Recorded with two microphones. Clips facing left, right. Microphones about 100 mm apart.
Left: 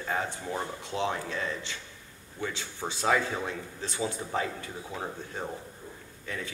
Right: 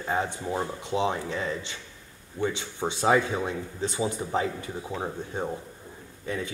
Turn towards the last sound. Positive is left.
turn(degrees=-20)  # may be behind; listen again after turning